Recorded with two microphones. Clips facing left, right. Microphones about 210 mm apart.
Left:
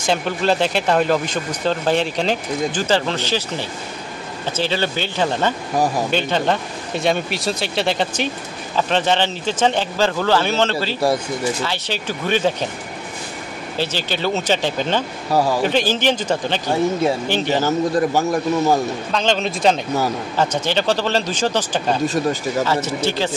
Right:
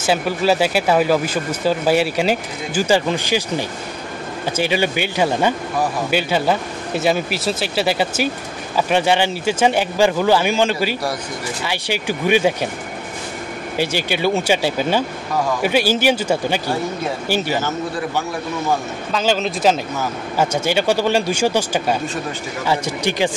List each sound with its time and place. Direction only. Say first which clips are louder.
0.0 s speech: right 2 dB; 5° right (ahead or behind)
13.7 s speech: right 3 dB; 10° right (ahead or behind)
17.6 s a man's voice: left 6 dB; 40° left (ahead or behind)
19.1 s speech: right 2 dB; 5° right (ahead or behind)